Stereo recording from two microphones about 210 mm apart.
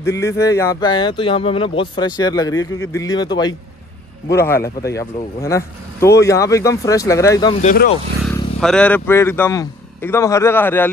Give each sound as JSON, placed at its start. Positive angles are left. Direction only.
{"t": 0.0, "sound": "speech", "side_deg": 15}
{"t": 7.6, "sound": "speech", "side_deg": 45}
{"t": 8.5, "sound": "speech", "side_deg": 5}